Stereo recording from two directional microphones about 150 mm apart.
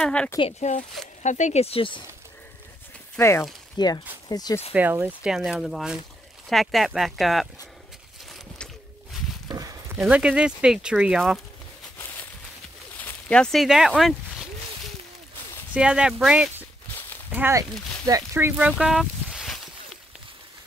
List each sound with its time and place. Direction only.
0.0 s speech: 5° left (ahead or behind)
0.4 s speech: 45° left (ahead or behind)
3.2 s speech: 15° left (ahead or behind)
4.7 s speech: 10° right (ahead or behind)
9.9 s speech: 5° right (ahead or behind)
12.0 s a sound: 15° left (ahead or behind)
13.0 s speech: 5° left (ahead or behind)
15.7 s speech: 5° right (ahead or behind)
18.6 s a sound: 5° right (ahead or behind)